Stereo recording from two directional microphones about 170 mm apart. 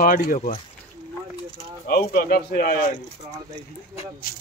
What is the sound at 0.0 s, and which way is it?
Speech, 55° left (ahead or behind).